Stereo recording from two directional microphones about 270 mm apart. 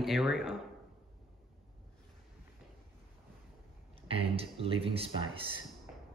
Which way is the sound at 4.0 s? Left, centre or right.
Right.